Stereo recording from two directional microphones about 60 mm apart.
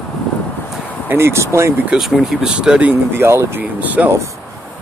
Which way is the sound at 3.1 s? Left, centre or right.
Right.